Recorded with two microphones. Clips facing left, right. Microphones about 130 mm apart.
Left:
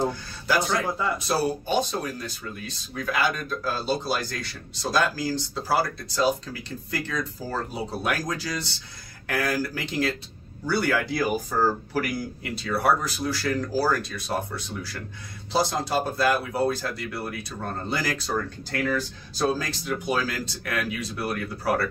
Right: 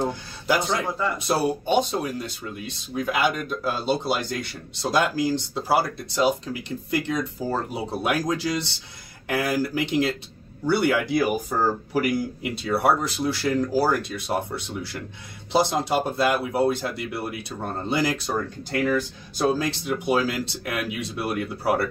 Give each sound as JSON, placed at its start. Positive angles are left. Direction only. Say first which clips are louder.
{"t": 0.0, "sound": "speech", "louder": "even", "side_deg": -20}